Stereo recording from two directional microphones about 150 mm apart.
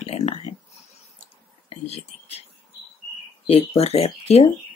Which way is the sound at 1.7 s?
45° left (ahead or behind).